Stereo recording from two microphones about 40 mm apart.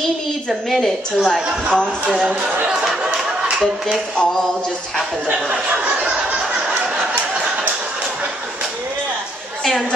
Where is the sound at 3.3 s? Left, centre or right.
Centre.